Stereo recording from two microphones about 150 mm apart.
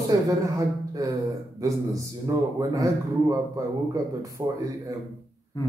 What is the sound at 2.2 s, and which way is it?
A man's voice, 25° right (ahead or behind).